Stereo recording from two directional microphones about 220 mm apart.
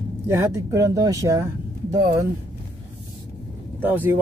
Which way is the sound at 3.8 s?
10° right (ahead or behind).